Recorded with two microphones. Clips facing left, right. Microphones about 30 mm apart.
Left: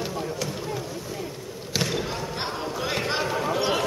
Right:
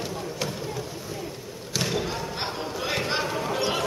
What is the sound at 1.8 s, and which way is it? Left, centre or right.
Basketball bounce, centre.